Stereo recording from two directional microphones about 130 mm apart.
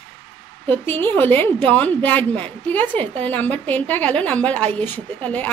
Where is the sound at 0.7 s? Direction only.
15° left (ahead or behind).